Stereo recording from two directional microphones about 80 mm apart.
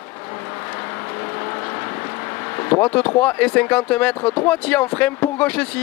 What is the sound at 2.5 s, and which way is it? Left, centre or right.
Speech, left.